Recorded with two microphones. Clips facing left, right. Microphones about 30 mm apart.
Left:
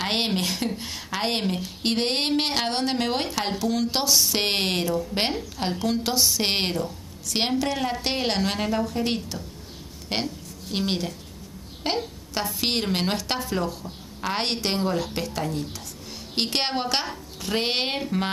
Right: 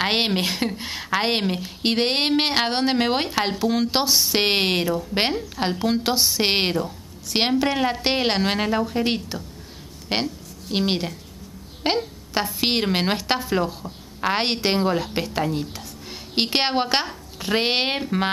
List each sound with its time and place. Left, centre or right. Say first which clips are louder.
0.0 s speech: right 4 dB; right